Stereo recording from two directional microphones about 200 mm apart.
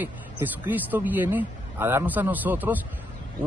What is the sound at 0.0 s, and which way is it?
A man's voice, 10° right (ahead or behind).